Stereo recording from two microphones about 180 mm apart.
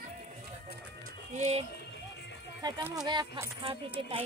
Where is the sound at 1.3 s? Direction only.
40° right (ahead or behind).